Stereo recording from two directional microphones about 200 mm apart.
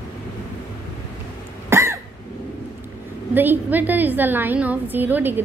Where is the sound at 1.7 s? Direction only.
10° right (ahead or behind).